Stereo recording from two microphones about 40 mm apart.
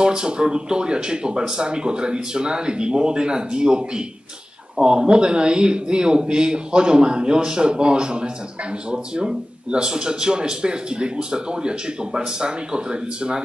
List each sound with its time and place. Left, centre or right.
0.0 s speech: centre